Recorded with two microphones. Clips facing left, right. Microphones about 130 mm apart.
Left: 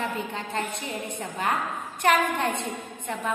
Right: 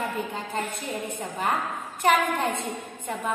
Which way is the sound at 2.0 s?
Centre (ahead or behind).